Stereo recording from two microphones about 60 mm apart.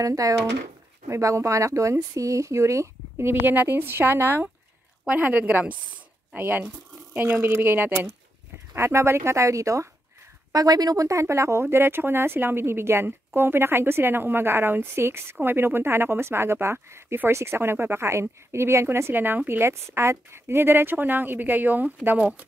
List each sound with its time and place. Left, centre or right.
0.0 s speech: right
1.0 s speech: right
3.3 s speech: right
5.0 s speech: right
8.7 s speech: right
10.5 s speech: right
19.7 s speech: right